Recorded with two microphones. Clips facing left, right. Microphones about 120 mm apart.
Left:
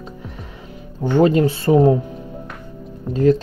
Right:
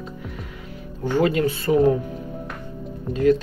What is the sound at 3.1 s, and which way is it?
Speech, 35° left (ahead or behind).